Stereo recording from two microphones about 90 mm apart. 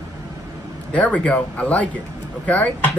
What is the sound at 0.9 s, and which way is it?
Speech, 15° left (ahead or behind).